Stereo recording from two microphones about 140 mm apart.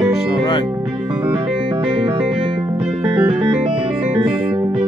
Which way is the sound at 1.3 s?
35° right (ahead or behind).